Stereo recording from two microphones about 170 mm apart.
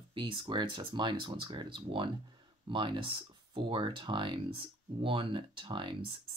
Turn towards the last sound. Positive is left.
turn(degrees=-30)  # may be behind; listen again after turning